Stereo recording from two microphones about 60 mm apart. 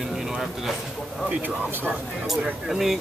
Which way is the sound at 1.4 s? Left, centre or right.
Right.